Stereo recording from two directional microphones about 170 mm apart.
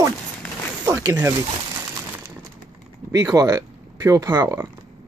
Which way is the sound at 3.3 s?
20° right (ahead or behind).